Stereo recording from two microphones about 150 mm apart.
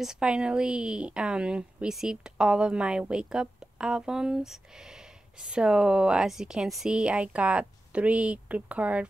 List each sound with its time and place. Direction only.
0.0 s a woman's voice: 5° right (ahead or behind)